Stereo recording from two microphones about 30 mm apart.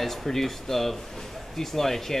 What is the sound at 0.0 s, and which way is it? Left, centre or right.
Speech, centre.